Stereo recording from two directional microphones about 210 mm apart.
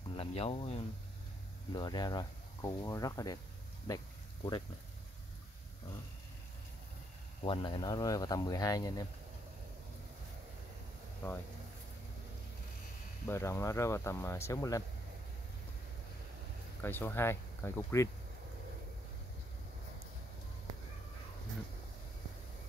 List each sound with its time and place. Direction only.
0.1 s speech: 25° left (ahead or behind)
7.4 s speech: 20° left (ahead or behind)
11.2 s speech: 10° left (ahead or behind)
13.3 s speech: 15° left (ahead or behind)
16.8 s speech: 10° left (ahead or behind)